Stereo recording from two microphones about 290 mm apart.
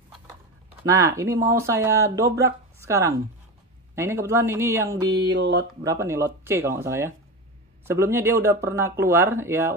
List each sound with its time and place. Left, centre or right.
0.8 s speech: centre
5.3 s speech: right
5.9 s speech: centre